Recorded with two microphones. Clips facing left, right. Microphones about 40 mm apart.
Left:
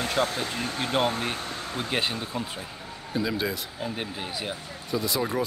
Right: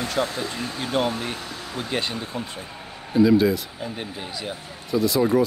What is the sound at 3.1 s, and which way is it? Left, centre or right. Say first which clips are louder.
Speech: right 11 dB; centre.